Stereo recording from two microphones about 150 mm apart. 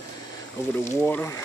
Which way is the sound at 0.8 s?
20° left (ahead or behind).